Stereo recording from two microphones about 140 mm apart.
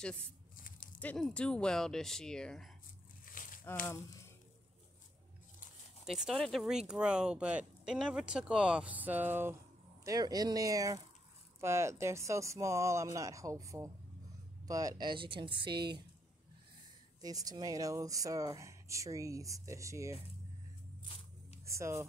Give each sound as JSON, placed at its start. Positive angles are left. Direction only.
{"t": 0.9, "sound": "speech", "side_deg": 5}
{"t": 3.4, "sound": "a sound", "side_deg": 70}
{"t": 3.8, "sound": "speech", "side_deg": 20}
{"t": 6.0, "sound": "speech", "side_deg": -5}
{"t": 10.0, "sound": "speech", "side_deg": -25}
{"t": 17.2, "sound": "speech", "side_deg": -25}
{"t": 21.6, "sound": "speech", "side_deg": -20}